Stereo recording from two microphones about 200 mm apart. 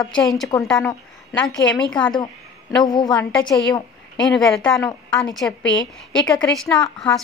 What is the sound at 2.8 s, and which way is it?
Speech, 20° left (ahead or behind).